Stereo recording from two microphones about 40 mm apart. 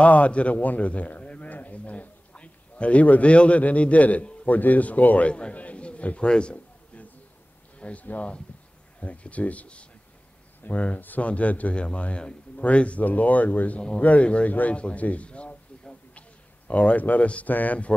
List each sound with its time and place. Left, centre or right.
0.0 s a man's voice: left
7.8 s a man's voice: left
13.7 s a man's voice: left
15.9 s a sound: left
17.5 s speech: left